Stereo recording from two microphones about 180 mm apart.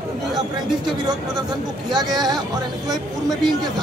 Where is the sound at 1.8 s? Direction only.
20° right (ahead or behind).